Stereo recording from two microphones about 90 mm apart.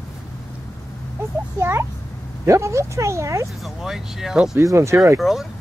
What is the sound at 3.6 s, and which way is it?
Speech, 5° right (ahead or behind).